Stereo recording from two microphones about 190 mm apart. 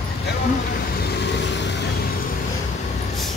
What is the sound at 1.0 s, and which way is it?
Vehicle, 65° left (ahead or behind).